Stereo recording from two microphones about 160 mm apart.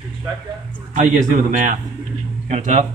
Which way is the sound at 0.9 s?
50° right (ahead or behind).